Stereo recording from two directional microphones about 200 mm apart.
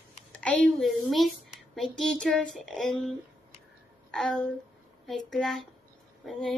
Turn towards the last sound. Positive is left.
turn(degrees=0)  # may be behind; listen again after turning